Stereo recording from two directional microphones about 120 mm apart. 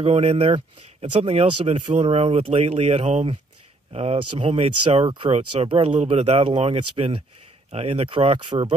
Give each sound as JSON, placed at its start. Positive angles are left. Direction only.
{"t": 0.0, "sound": "speech", "side_deg": -60}
{"t": 5.0, "sound": "speech", "side_deg": -45}